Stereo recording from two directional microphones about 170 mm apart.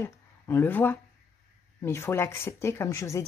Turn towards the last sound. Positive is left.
turn(degrees=15)  # may be behind; listen again after turning